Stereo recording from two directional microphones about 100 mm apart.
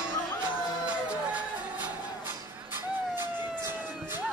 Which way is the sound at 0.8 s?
15° right (ahead or behind).